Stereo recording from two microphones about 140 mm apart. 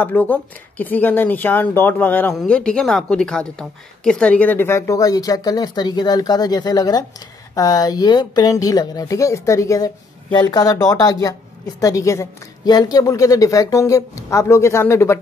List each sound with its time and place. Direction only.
0.0 s a woman's voice: 15° left (ahead or behind)